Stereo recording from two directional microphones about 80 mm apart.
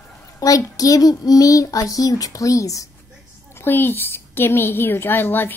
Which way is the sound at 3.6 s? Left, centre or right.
Left.